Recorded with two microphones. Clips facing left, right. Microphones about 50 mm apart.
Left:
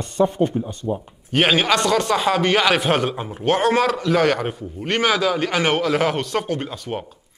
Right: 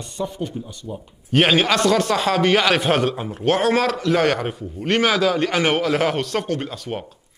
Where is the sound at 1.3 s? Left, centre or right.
Centre.